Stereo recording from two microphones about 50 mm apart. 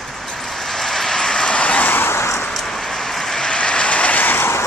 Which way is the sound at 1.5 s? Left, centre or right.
Left.